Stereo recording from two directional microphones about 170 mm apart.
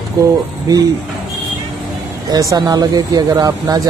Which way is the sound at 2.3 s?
20° right (ahead or behind).